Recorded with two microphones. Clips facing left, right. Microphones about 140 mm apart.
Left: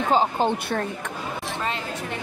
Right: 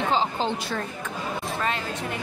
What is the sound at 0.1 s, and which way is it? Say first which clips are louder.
Speech: left 8 dB; 50° left (ahead or behind).